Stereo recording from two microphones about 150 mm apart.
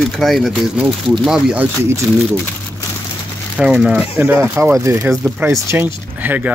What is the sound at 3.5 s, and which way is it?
Speech, 5° right (ahead or behind).